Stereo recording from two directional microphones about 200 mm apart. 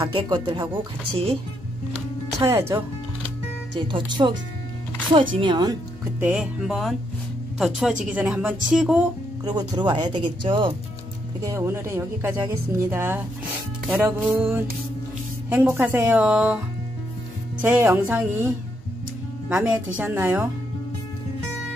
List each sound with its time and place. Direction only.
0.0 s speech: 25° right (ahead or behind)
3.8 s speech: 25° right (ahead or behind)
6.1 s speech: 10° right (ahead or behind)
9.4 s speech: 20° right (ahead or behind)
11.4 s speech: 15° right (ahead or behind)
17.6 s speech: 10° right (ahead or behind)
19.5 s speech: 5° right (ahead or behind)